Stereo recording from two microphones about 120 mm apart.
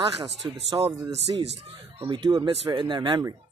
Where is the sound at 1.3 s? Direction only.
40° right (ahead or behind).